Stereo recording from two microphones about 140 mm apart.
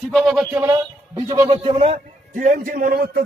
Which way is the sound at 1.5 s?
45° right (ahead or behind).